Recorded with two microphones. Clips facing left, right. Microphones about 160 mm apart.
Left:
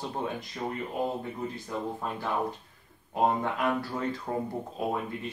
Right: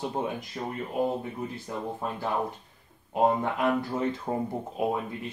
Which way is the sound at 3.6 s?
20° right (ahead or behind).